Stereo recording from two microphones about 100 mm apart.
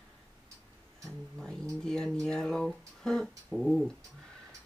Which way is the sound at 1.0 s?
5° left (ahead or behind).